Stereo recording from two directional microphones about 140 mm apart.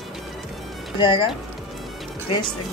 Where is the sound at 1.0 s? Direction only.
35° left (ahead or behind).